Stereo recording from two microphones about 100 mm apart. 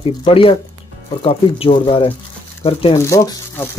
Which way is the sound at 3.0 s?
35° left (ahead or behind).